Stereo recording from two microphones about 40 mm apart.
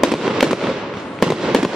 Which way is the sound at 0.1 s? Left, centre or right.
Centre.